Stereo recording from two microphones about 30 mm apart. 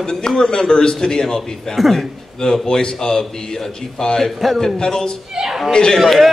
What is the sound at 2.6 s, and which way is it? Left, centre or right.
A man's voice, centre.